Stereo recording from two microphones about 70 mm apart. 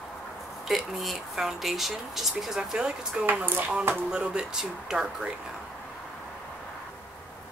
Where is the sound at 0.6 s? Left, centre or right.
Centre.